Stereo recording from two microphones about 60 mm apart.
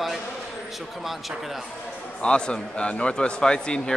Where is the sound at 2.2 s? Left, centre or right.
Centre.